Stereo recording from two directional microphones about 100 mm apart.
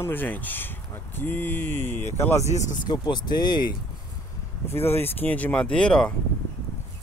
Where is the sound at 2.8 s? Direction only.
45° left (ahead or behind).